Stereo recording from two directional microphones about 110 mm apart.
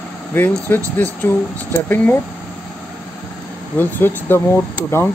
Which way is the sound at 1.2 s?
15° left (ahead or behind).